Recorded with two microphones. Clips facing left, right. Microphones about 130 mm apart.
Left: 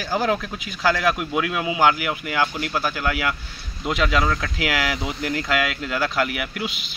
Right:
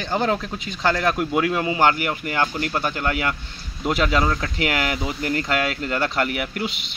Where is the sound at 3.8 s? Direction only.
Centre (ahead or behind).